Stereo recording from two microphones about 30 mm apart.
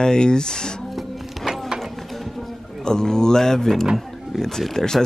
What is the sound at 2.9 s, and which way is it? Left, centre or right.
Speech, left.